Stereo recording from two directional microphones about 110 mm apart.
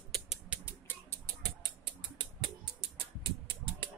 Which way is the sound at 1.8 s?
45° right (ahead or behind).